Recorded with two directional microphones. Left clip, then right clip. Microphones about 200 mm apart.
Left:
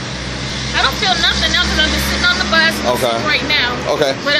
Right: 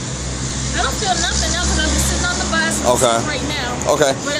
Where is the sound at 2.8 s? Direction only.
15° right (ahead or behind).